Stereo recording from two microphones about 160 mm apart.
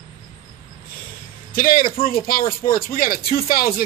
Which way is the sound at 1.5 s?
65° left (ahead or behind).